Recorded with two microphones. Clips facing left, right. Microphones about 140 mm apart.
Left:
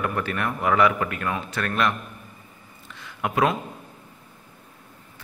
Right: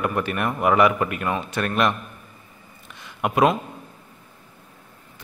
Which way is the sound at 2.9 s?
15° right (ahead or behind).